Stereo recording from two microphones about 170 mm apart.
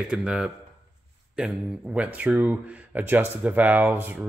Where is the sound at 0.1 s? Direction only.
5° right (ahead or behind).